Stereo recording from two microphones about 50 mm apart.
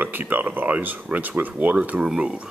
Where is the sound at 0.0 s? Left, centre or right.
Right.